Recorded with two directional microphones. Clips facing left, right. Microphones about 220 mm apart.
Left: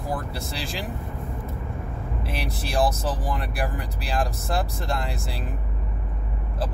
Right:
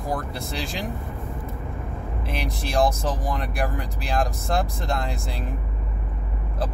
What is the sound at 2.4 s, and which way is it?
Speech, 5° left (ahead or behind).